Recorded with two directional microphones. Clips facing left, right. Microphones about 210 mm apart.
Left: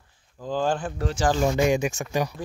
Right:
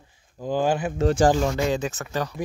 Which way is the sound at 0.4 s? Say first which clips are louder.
Right 2 dB; 15° right (ahead or behind).